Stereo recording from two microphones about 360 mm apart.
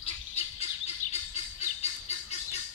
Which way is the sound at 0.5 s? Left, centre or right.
Centre.